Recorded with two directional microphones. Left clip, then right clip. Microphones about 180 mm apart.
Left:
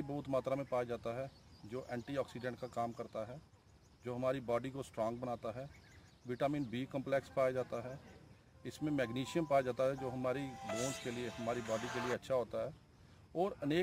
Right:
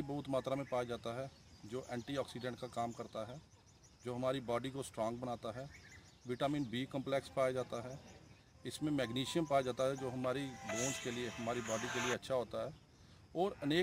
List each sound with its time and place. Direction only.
0.1 s speech: 5° left (ahead or behind)
10.5 s speech: 20° left (ahead or behind)
12.1 s speech: 10° left (ahead or behind)